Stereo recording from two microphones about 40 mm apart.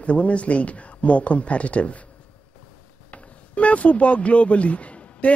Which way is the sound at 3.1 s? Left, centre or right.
Left.